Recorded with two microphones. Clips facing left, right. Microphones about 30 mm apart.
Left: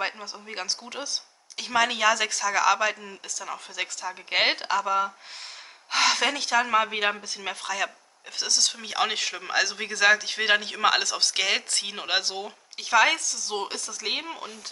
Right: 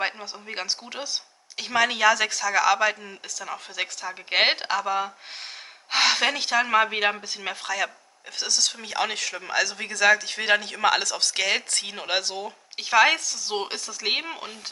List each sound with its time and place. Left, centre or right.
0.0 s speech: centre
7.4 s speech: centre
12.7 s speech: centre